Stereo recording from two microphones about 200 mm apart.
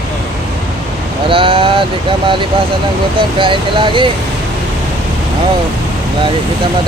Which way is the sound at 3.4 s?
25° right (ahead or behind).